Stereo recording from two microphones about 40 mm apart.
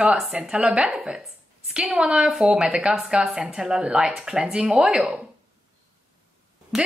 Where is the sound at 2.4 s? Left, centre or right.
Centre.